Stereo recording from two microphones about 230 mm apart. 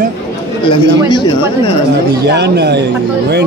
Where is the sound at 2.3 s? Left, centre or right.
Right.